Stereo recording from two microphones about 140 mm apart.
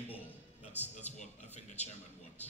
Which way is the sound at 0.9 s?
55° left (ahead or behind).